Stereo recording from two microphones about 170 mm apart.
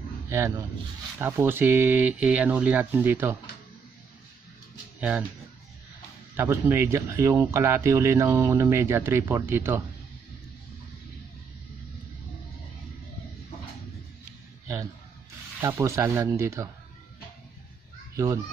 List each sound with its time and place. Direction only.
0.3 s a man's voice: 15° right (ahead or behind)
6.3 s a man's voice: 15° right (ahead or behind)
15.6 s a man's voice: 20° right (ahead or behind)
18.1 s speech: 20° right (ahead or behind)